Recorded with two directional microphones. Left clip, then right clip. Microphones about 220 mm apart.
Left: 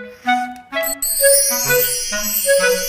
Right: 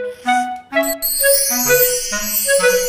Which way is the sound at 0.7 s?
5° left (ahead or behind).